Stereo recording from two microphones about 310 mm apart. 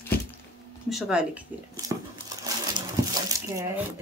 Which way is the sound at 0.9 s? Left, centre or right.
Centre.